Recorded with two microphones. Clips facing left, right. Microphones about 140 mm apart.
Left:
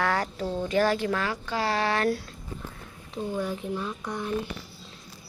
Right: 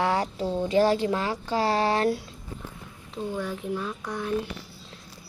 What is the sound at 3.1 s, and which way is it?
Speech, 5° left (ahead or behind).